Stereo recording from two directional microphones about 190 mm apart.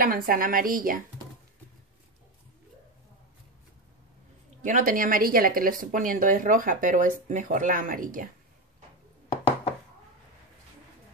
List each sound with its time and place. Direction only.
0.0 s a woman's voice: 50° right (ahead or behind)
4.6 s a woman's voice: 45° right (ahead or behind)